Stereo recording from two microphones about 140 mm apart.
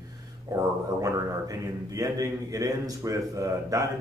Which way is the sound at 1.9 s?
25° right (ahead or behind).